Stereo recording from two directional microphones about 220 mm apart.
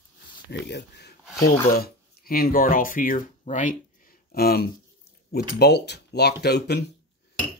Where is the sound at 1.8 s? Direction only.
40° left (ahead or behind).